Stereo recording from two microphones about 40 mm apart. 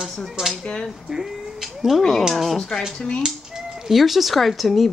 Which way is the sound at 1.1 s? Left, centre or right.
Centre.